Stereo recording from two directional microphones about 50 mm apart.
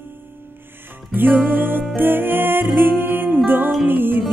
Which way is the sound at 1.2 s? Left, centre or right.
Right.